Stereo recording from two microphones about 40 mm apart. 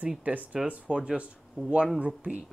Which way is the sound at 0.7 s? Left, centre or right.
Right.